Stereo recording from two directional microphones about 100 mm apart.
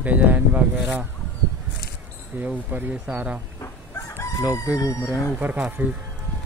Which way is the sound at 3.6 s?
25° left (ahead or behind).